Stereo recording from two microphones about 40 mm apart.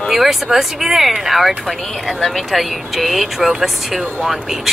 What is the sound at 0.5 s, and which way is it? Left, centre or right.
Music, centre.